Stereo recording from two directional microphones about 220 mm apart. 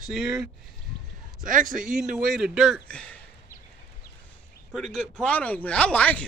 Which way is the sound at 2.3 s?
Centre (ahead or behind).